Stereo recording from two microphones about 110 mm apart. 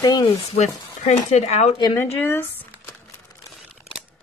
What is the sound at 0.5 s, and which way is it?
Speech, 85° left.